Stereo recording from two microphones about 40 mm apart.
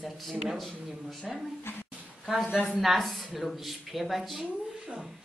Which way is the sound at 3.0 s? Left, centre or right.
Centre.